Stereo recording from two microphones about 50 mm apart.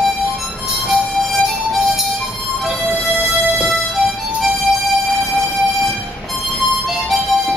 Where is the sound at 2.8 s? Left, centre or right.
Right.